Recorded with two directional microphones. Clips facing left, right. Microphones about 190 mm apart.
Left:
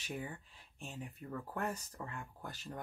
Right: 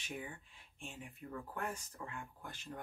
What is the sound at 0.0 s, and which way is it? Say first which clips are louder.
Speech: left 3 dB; 40° left (ahead or behind).